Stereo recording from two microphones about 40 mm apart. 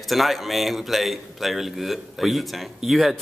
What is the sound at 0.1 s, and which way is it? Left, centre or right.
A man's voice, centre.